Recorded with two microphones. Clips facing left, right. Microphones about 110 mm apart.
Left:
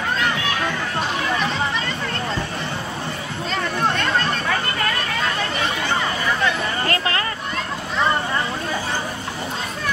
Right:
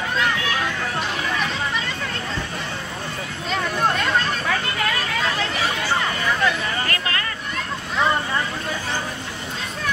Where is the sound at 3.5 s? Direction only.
5° right (ahead or behind).